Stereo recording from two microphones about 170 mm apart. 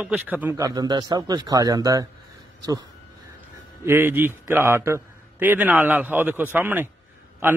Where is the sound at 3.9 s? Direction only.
15° right (ahead or behind).